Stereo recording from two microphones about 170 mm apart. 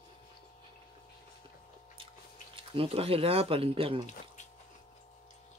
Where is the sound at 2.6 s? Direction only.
30° right (ahead or behind).